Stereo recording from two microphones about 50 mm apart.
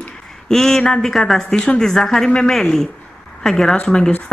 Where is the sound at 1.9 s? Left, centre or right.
Centre.